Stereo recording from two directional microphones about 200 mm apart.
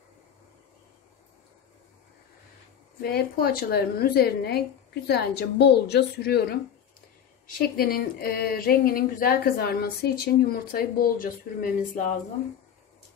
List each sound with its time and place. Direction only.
3.0 s speech: 50° left (ahead or behind)